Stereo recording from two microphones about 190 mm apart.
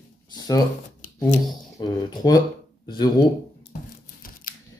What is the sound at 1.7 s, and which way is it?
Speech, 20° left (ahead or behind).